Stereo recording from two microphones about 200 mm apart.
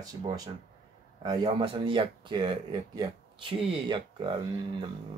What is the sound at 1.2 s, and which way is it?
Speech, 20° right (ahead or behind).